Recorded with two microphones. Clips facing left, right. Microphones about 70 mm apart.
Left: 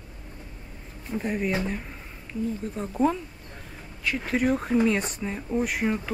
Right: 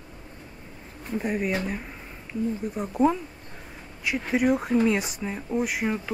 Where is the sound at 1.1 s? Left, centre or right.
Centre.